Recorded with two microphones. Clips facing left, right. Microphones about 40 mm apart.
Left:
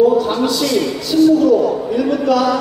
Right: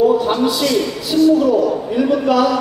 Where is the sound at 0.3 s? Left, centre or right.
Right.